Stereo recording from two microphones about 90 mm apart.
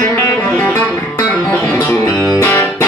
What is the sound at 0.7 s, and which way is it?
Music, 30° left (ahead or behind).